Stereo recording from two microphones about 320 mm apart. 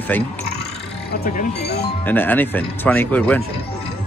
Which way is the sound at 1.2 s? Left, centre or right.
Left.